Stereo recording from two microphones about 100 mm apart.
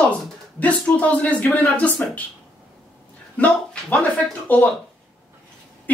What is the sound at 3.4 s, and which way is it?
Speech, 15° left (ahead or behind).